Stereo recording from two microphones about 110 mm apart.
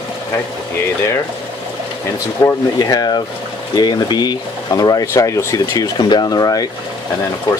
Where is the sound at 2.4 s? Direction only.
30° left (ahead or behind).